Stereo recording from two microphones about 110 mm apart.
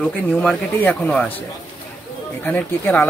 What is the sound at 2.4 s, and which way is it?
Speech, 15° left (ahead or behind).